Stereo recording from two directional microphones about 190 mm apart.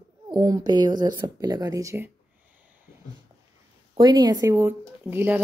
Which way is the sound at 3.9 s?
20° right (ahead or behind).